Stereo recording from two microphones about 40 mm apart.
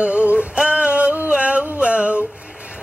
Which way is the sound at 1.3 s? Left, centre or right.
Right.